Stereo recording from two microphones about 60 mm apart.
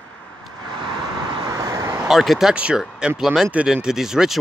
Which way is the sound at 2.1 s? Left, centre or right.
Centre.